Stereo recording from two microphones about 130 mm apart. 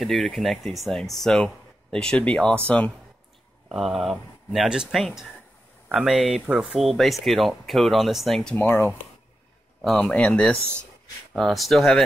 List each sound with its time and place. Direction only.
0.0 s speech: 5° left (ahead or behind)
3.6 s speech: centre (ahead or behind)
8.5 s speech: 15° left (ahead or behind)
9.9 s speech: 10° left (ahead or behind)